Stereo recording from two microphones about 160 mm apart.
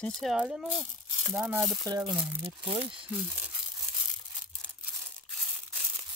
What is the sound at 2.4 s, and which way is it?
Speech, 35° right (ahead or behind).